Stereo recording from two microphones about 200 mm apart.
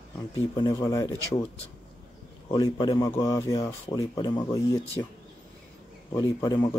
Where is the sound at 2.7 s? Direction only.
20° left (ahead or behind).